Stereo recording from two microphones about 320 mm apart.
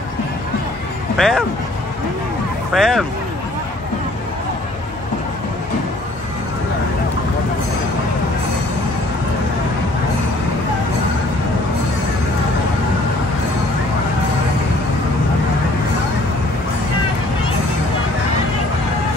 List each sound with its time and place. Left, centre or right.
1.1 s speech: centre
2.7 s speech: centre